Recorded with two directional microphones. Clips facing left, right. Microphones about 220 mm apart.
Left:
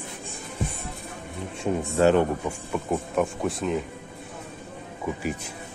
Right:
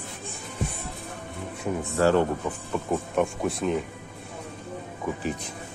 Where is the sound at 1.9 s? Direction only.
20° left (ahead or behind).